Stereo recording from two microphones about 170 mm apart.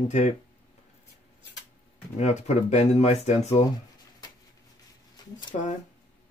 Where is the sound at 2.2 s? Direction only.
40° left (ahead or behind).